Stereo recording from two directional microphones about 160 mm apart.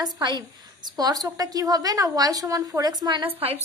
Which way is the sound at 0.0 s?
25° right (ahead or behind).